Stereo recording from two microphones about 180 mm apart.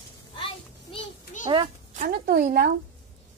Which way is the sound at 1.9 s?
50° right (ahead or behind).